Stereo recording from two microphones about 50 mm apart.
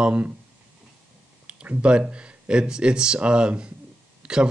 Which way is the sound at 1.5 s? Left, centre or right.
Right.